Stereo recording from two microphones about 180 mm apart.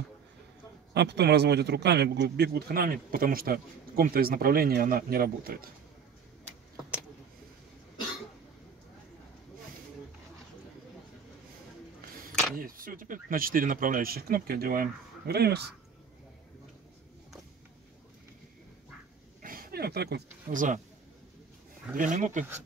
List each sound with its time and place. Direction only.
0.9 s speech: 65° right (ahead or behind)
12.5 s speech: 50° right (ahead or behind)
19.4 s a sound: 55° right (ahead or behind)
21.9 s speech: 45° right (ahead or behind)